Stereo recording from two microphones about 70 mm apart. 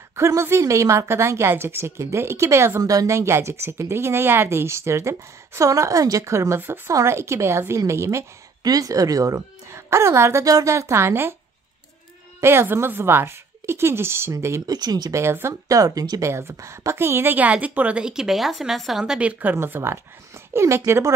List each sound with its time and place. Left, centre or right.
0.1 s a woman's voice: right
2.8 s speech: right
3.1 s a woman's voice: right
8.6 s speech: right
9.8 s a woman's voice: right
10.4 s a woman's voice: right
12.4 s a woman's voice: right
14.7 s speech: right
15.1 s a woman's voice: right
15.7 s speech: right
16.2 s a woman's voice: right; by 19.1 s centre
19.1 s a woman's voice: centre
19.5 s a woman's voice: right